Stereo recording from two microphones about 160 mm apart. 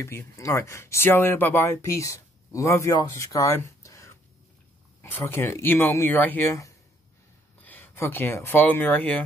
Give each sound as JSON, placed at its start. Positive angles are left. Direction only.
{"t": 0.0, "sound": "speech", "side_deg": 20}